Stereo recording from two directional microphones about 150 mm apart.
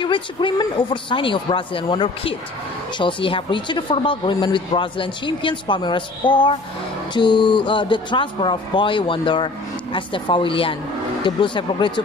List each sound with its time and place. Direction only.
0.0 s speech: 35° left (ahead or behind)